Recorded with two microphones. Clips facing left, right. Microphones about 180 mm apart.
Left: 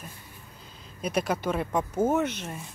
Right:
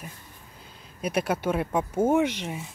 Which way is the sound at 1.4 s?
10° right (ahead or behind).